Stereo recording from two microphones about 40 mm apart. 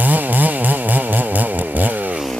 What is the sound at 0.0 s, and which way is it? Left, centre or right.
Chainsaw, right.